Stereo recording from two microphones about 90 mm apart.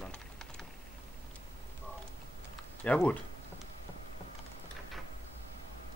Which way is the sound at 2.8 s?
15° left (ahead or behind).